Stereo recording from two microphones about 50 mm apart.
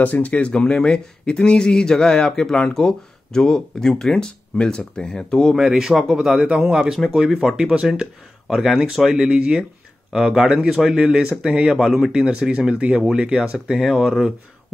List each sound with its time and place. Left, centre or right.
0.0 s speech: left; by 5.6 s centre
5.6 s speech: centre
6.4 s speech: right
6.7 s speech: centre
11.0 s speech: centre
12.1 s speech: centre
13.1 s speech: centre